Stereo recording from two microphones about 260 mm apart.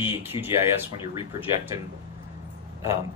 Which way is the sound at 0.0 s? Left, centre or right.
Centre.